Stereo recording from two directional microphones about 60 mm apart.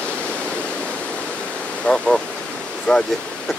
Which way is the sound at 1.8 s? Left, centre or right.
Centre.